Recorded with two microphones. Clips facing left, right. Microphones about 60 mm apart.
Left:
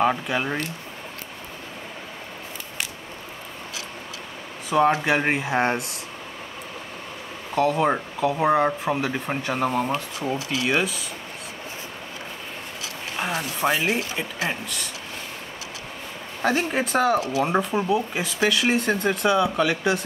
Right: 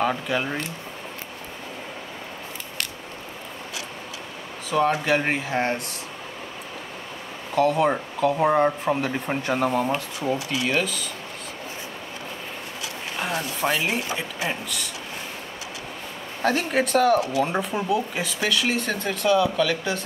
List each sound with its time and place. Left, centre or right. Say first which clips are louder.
0.0 s speech: left 2 dB; centre
4.6 s speech: left 2 dB; centre
7.5 s speech: right 1 dB; centre
13.2 s speech: left 1 dB; centre
16.4 s speech: right 1 dB; centre
17.6 s speech: left 2 dB; centre
18.4 s speech: left 3 dB; centre